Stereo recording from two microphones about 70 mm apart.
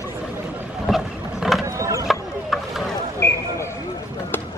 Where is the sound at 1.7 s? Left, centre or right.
Right.